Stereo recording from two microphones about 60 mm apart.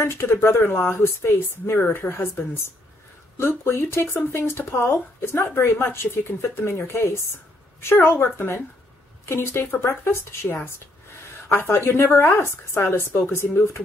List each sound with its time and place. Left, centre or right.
0.0 s speech: left
1.8 s a woman's voice: left